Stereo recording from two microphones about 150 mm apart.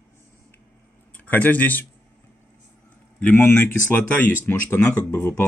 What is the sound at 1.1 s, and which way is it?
Speech, 10° left (ahead or behind).